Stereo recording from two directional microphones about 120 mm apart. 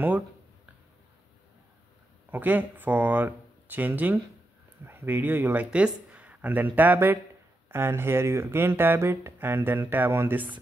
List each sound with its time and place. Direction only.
2.3 s speech: 15° right (ahead or behind)